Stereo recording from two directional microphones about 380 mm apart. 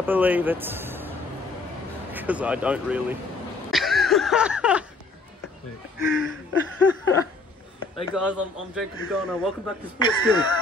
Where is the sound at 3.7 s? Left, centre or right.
Centre.